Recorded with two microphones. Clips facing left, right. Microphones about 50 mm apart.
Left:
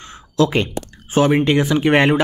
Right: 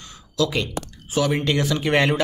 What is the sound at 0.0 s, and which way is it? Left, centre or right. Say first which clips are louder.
Speech: left 6 dB; left.